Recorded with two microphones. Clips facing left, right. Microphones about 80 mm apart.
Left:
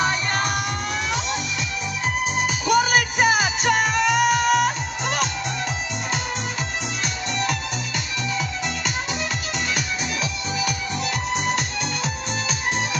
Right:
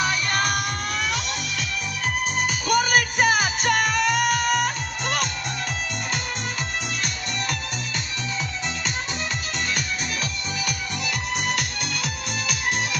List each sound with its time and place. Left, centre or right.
0.0 s music: left
2.4 s music: centre
10.6 s music: centre